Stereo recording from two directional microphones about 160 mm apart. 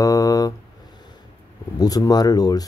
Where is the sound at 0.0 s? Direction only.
20° left (ahead or behind).